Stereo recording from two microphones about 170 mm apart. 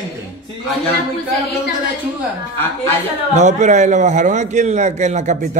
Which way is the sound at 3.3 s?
45° right (ahead or behind).